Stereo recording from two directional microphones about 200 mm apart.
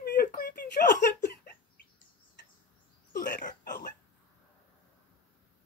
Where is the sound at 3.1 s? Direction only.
55° left (ahead or behind).